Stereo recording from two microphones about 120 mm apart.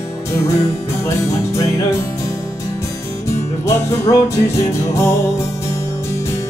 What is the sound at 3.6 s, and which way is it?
Music, 25° left (ahead or behind).